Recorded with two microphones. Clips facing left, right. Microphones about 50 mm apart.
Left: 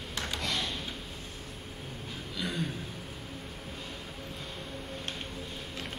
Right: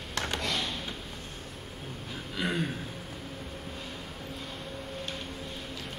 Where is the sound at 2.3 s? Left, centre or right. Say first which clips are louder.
Right 4 dB; right.